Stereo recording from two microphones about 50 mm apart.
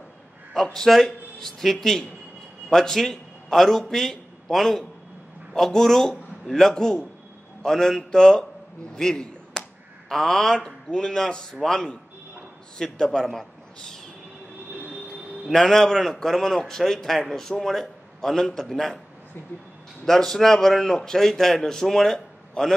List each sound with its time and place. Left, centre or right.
0.7 s a man's voice: centre
8.9 s a sound: centre
10.0 s a man's voice: centre
15.5 s a man's voice: centre
20.1 s a man's voice: centre